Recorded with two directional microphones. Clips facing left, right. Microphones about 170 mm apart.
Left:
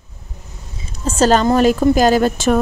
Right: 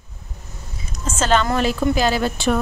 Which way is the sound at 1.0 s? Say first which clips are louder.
Left 6 dB; 35° left (ahead or behind).